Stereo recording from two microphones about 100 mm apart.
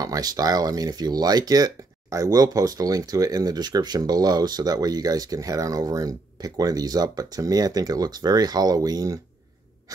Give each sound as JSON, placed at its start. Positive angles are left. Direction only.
{"t": 0.0, "sound": "speech", "side_deg": -40}